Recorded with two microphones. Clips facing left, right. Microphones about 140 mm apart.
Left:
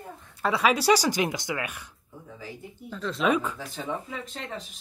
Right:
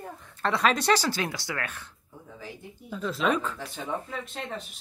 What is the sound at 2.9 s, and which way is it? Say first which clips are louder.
Speech: even; 5° right (ahead or behind).